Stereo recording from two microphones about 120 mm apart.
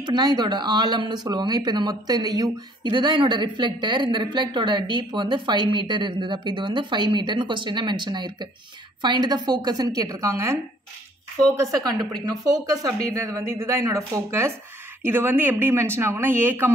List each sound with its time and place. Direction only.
0.0 s speech: 35° right (ahead or behind)
12.6 s a woman's voice: 30° right (ahead or behind)